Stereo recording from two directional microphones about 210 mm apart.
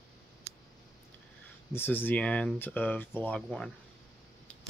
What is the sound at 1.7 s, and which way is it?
Speech, 10° left (ahead or behind).